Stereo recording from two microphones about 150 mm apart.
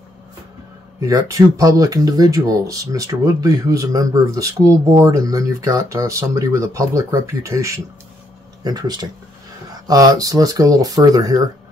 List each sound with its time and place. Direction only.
1.0 s speech: 20° right (ahead or behind)